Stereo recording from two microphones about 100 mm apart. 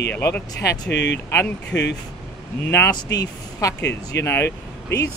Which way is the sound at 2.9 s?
40° left (ahead or behind).